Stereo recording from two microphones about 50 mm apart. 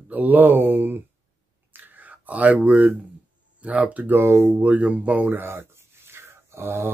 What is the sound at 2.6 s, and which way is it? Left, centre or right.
Speech, right.